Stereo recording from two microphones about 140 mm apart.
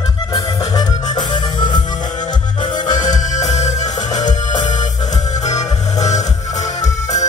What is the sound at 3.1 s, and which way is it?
Music, 55° left (ahead or behind).